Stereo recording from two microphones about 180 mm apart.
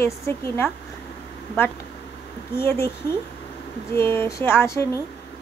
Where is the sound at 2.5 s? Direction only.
15° left (ahead or behind).